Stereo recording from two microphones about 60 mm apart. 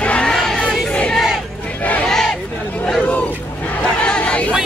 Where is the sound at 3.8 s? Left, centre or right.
Left.